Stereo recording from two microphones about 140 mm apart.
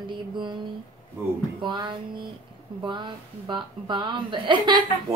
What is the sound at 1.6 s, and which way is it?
A woman's voice, 35° right (ahead or behind).